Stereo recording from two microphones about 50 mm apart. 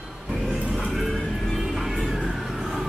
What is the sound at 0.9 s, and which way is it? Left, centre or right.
Music, centre.